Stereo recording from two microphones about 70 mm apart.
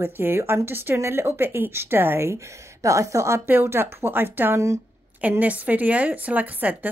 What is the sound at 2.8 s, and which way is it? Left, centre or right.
Speech, right.